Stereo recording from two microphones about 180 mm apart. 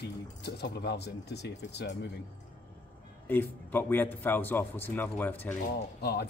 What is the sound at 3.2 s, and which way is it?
Speech, 10° left (ahead or behind).